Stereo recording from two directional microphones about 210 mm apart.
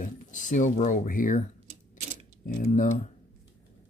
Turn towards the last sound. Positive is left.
turn(degrees=35)  # may be behind; listen again after turning